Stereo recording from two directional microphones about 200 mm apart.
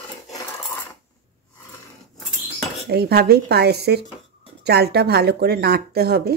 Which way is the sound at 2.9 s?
50° right (ahead or behind).